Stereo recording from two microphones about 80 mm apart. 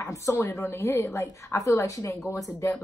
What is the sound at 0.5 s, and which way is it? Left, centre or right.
A woman's voice, left.